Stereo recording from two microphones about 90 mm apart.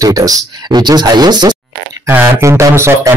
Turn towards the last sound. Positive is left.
turn(degrees=-30)  # may be behind; listen again after turning